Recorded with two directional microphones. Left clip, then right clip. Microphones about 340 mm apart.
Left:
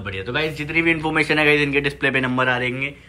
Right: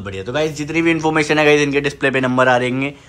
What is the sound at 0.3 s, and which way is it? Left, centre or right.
A man's voice, centre.